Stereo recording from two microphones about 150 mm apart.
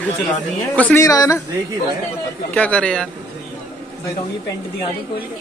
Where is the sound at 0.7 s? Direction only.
10° left (ahead or behind).